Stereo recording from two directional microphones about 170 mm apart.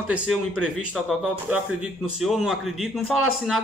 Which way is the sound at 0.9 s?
Centre (ahead or behind).